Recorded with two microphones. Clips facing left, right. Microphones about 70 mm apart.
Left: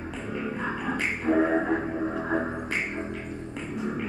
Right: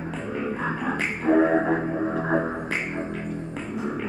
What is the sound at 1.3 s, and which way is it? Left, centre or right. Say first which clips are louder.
Music: right 4 dB; centre.